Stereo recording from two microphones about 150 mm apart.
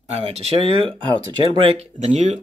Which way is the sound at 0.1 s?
45° right (ahead or behind).